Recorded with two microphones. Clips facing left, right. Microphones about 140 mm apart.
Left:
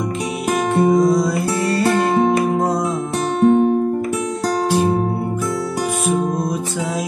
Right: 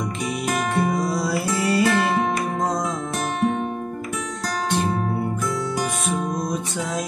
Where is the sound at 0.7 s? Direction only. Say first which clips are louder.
Left 12 dB; centre (ahead or behind).